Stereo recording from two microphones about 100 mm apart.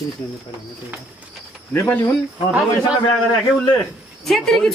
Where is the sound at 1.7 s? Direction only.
20° left (ahead or behind).